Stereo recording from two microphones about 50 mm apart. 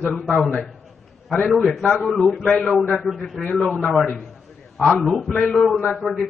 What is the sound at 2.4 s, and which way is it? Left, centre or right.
Speech, centre.